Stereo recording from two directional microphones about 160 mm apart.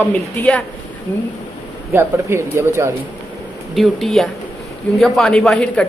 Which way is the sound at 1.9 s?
15° right (ahead or behind).